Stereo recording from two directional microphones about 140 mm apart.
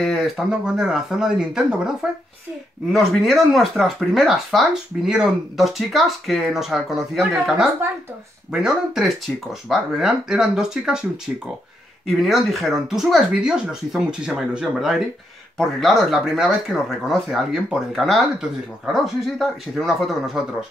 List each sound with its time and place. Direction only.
0.0 s speech: centre (ahead or behind)
12.2 s speech: centre (ahead or behind)